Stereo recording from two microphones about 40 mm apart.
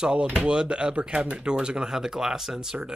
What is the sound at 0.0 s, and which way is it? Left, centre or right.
Speech, right.